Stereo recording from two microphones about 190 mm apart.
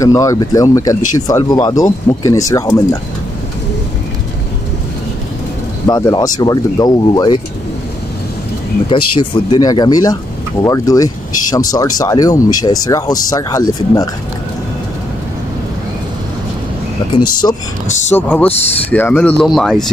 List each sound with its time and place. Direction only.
0.0 s speech: 15° left (ahead or behind)
5.9 s speech: 20° left (ahead or behind)
8.9 s speech: 25° left (ahead or behind)
17.1 s speech: 20° left (ahead or behind)
18.1 s speech: 10° left (ahead or behind)